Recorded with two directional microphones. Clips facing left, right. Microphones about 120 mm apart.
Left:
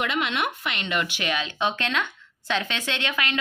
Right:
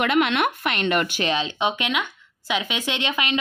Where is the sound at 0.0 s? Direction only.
60° right (ahead or behind).